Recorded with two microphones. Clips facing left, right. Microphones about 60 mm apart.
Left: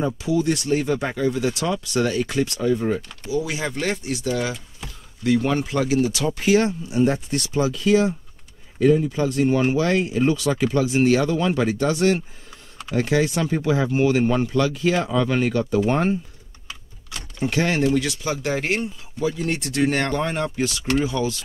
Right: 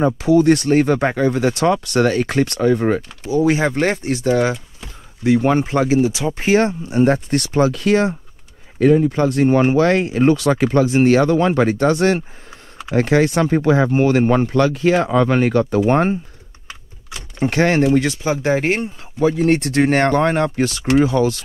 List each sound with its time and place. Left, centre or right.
0.0 s speech: right
3.3 s speech: right
5.2 s speech: right
6.4 s speech: right
17.4 s speech: right
17.8 s speech: right
19.1 s speech: right